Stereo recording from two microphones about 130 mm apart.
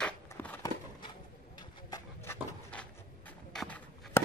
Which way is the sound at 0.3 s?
15° left (ahead or behind).